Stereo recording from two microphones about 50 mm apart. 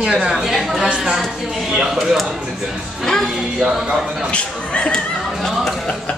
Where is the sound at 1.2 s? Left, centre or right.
Centre.